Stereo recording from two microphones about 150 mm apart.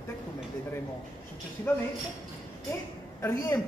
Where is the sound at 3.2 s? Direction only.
20° left (ahead or behind).